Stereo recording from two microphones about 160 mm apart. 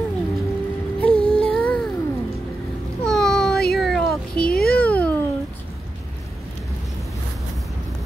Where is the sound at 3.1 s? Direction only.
Centre (ahead or behind).